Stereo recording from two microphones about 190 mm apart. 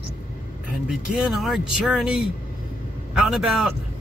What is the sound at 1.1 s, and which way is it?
Speech, centre (ahead or behind).